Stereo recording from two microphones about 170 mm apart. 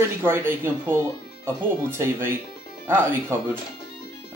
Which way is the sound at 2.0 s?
15° right (ahead or behind).